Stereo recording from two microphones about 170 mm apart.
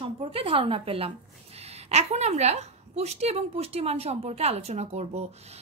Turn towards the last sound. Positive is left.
turn(degrees=-40)  # may be behind; listen again after turning